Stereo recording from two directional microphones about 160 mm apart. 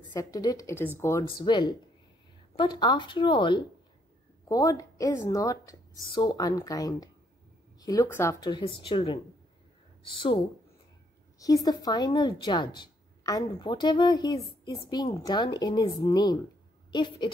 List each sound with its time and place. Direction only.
0.1 s speech: 25° left (ahead or behind)
1.4 s speech: 30° left (ahead or behind)
11.3 s speech: 20° left (ahead or behind)